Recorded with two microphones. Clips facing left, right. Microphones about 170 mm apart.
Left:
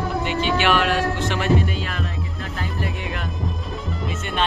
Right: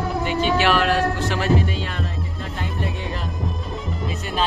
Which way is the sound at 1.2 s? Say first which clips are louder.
Even; 35° right (ahead or behind).